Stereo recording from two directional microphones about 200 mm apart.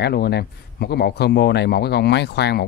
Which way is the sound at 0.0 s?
55° left (ahead or behind).